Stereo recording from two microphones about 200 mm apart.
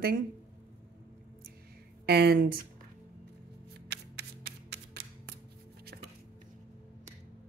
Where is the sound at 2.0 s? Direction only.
55° right (ahead or behind).